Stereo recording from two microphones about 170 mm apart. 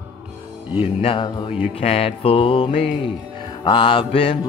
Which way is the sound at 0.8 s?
35° left (ahead or behind).